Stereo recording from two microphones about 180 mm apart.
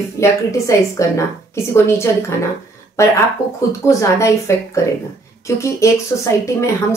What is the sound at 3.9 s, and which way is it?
Speech, 15° left (ahead or behind).